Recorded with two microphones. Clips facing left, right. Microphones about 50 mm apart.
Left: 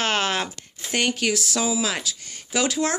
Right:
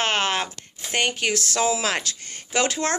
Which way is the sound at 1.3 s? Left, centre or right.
Right.